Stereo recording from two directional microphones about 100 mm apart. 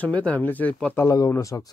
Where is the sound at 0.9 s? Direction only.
35° left (ahead or behind).